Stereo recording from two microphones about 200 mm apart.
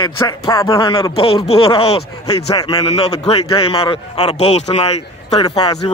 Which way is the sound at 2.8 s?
30° left (ahead or behind).